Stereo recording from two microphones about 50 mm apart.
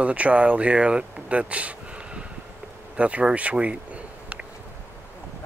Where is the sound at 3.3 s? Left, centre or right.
Right.